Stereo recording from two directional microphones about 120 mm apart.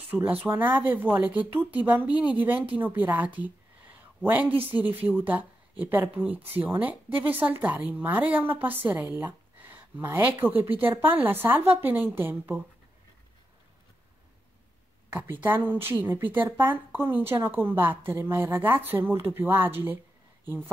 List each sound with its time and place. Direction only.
0.1 s speech: 15° right (ahead or behind)
3.4 s a sound: 15° right (ahead or behind)
5.0 s speech: 15° right (ahead or behind)
15.4 s speech: 15° right (ahead or behind)